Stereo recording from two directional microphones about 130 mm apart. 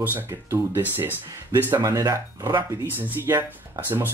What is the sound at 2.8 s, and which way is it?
Speech, 15° right (ahead or behind).